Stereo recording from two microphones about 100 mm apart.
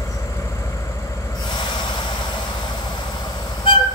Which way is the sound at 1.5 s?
50° left (ahead or behind).